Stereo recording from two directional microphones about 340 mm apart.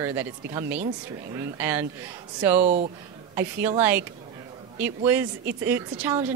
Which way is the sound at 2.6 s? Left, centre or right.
Centre.